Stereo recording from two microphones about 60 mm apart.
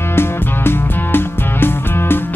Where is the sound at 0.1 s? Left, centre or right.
Left.